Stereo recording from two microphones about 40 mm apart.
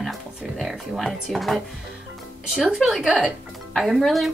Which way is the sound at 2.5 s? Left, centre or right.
Centre.